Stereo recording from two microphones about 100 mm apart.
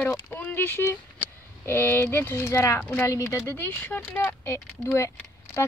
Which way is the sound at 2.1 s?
25° left (ahead or behind).